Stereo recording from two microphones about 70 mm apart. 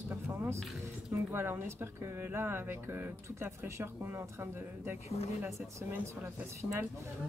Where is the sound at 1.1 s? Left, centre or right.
Right.